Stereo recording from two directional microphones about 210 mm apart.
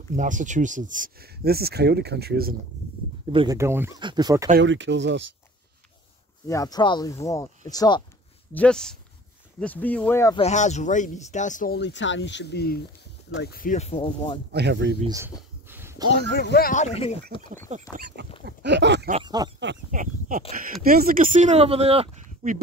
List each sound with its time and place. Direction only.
0.1 s speech: 35° right (ahead or behind)
3.3 s speech: 20° right (ahead or behind)
4.6 s speech: 60° right (ahead or behind)
6.4 s speech: 15° left (ahead or behind)
8.5 s speech: 5° left (ahead or behind)
10.3 s speech: 30° left (ahead or behind)
14.5 s speech: 55° right (ahead or behind)
15.0 s speech: 15° right (ahead or behind)
15.6 s a sound: 10° right (ahead or behind)
16.1 s speech: 55° left (ahead or behind); by 17.5 s 25° left (ahead or behind)
17.7 s speech: 35° right (ahead or behind)
18.4 s speech: 55° right (ahead or behind)
19.2 s speech: 20° right (ahead or behind)
19.9 s speech: 40° right (ahead or behind)